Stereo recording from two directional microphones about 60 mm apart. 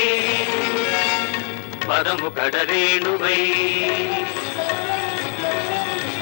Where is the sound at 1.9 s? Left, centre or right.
Left.